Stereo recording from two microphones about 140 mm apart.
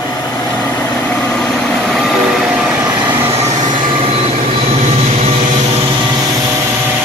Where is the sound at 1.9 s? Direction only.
Centre (ahead or behind).